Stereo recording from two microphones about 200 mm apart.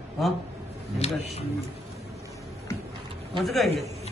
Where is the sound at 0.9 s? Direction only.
30° left (ahead or behind).